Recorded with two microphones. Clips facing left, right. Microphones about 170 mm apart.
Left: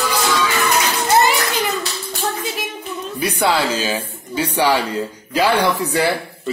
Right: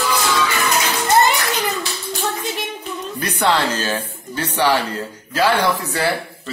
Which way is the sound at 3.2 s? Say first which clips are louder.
Left 1 dB; 10° left (ahead or behind).